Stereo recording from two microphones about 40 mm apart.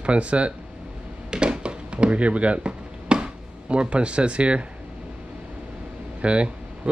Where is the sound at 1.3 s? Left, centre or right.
Right.